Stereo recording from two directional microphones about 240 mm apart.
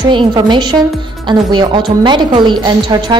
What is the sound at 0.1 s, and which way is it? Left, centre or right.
A woman's voice, centre.